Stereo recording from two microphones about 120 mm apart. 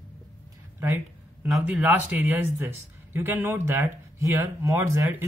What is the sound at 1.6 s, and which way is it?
Speech, 15° right (ahead or behind).